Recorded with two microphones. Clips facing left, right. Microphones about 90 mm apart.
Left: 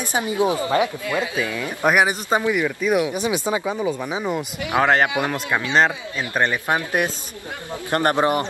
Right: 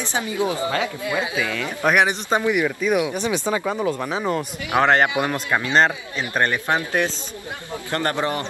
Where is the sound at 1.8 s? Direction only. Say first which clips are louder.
Left 1 dB; 5° left (ahead or behind).